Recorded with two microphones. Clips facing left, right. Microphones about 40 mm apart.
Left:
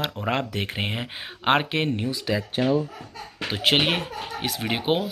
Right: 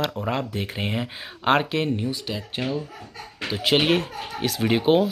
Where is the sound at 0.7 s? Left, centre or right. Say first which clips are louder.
Right 1 dB; left.